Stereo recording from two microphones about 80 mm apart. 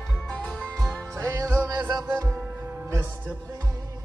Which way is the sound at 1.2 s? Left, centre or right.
Right.